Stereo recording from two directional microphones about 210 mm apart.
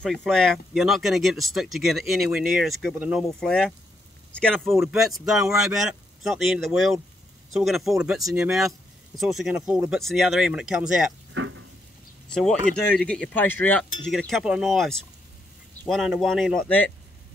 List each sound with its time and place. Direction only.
0.0 s speech: centre (ahead or behind)
11.3 s rodents: 65° right (ahead or behind)
12.3 s speech: centre (ahead or behind)